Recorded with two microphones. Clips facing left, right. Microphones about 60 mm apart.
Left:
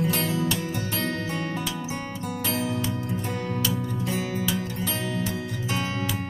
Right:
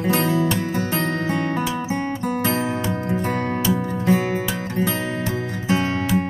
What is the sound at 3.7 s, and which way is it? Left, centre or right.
Music, right.